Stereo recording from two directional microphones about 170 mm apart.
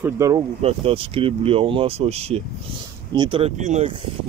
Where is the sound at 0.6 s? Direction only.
35° right (ahead or behind).